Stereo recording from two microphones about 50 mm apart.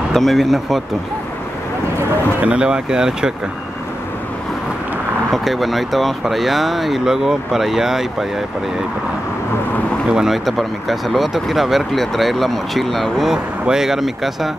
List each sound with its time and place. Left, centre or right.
0.1 s speech: centre
2.4 s speech: centre
5.3 s speech: centre
10.0 s speech: centre
10.3 s speech: centre
13.3 s speech: centre